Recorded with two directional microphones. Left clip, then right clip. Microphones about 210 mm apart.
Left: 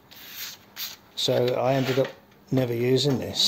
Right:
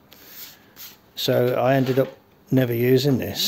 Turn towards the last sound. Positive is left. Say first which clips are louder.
# right 2 dB
turn(degrees=-30)  # may be behind; listen again after turning